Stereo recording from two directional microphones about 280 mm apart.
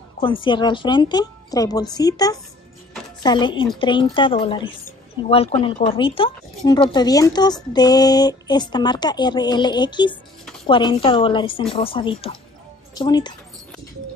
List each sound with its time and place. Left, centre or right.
0.2 s speech: centre